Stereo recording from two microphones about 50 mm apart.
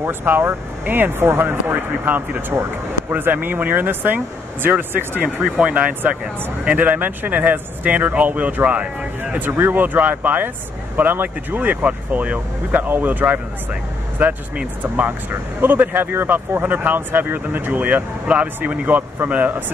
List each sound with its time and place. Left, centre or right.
0.2 s speech: right
14.8 s a man's voice: right